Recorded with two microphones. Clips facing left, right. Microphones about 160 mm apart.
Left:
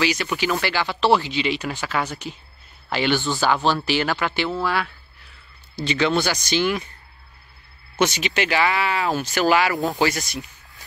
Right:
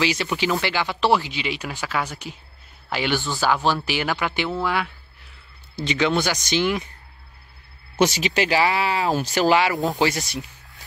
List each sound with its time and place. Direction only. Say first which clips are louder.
0.0 s speech: even; 25° right (ahead or behind)
8.2 s speech: right 1 dB; 35° right (ahead or behind)
9.8 s speech: even; centre (ahead or behind)